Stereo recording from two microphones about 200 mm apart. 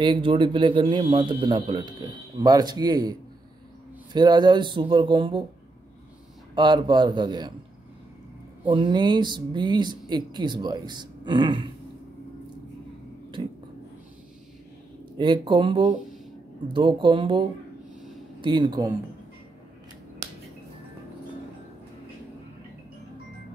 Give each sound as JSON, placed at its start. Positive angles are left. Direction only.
{"t": 0.0, "sound": "a man's voice", "side_deg": -25}
{"t": 6.5, "sound": "a man's voice", "side_deg": -20}
{"t": 8.6, "sound": "a man's voice", "side_deg": -25}
{"t": 13.4, "sound": "a man's voice", "side_deg": -25}
{"t": 15.1, "sound": "a man's voice", "side_deg": -25}